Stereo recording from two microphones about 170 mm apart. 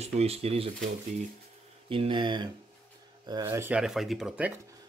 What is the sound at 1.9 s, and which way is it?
Speech, 30° right (ahead or behind).